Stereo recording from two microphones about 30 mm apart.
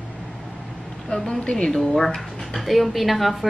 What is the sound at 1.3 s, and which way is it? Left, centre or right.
Speech, left.